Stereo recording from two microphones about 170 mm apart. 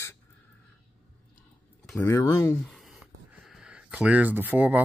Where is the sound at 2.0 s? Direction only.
15° left (ahead or behind).